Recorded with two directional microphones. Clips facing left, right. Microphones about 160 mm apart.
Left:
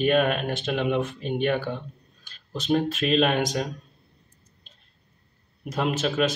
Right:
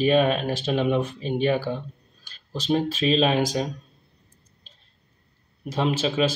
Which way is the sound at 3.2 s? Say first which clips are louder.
Right 2 dB; 5° right (ahead or behind).